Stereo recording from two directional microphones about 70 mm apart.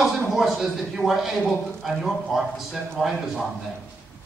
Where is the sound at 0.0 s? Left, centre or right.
Centre.